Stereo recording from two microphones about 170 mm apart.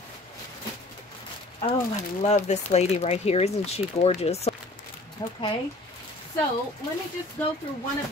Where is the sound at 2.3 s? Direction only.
40° left (ahead or behind).